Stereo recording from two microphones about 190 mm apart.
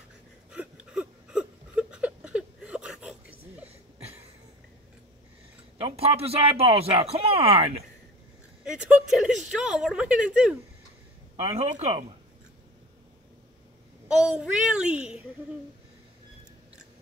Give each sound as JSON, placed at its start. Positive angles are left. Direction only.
{"t": 0.5, "sound": "a sound", "side_deg": -5}
{"t": 5.8, "sound": "speech", "side_deg": -30}
{"t": 8.6, "sound": "speech", "side_deg": -5}
{"t": 11.4, "sound": "speech", "side_deg": -35}
{"t": 14.0, "sound": "speech", "side_deg": -5}